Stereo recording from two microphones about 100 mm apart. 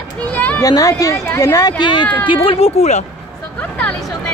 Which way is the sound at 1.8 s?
50° left (ahead or behind).